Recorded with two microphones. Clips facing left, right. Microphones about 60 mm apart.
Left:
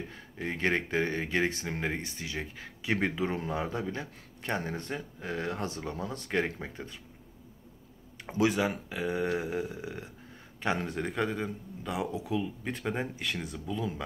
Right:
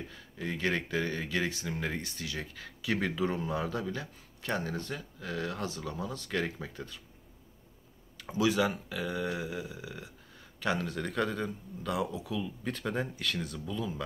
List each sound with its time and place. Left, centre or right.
0.1 s speech: left
8.3 s speech: left
10.6 s speech: left